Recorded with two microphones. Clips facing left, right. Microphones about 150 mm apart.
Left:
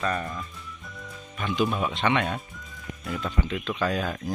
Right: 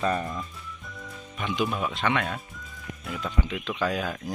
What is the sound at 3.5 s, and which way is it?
Speech, 10° right (ahead or behind).